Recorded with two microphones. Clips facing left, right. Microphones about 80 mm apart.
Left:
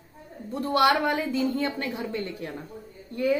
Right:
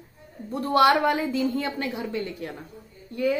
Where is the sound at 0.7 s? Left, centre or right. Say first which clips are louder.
Right 3 dB; centre.